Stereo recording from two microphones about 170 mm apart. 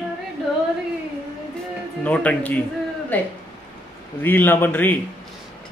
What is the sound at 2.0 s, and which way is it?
Speech, 10° left (ahead or behind).